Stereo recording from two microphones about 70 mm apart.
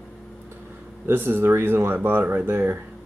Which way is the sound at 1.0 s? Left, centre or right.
Right.